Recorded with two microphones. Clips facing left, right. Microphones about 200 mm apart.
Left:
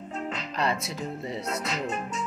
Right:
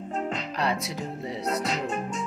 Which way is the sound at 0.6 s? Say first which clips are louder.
Left 1 dB; 15° right (ahead or behind).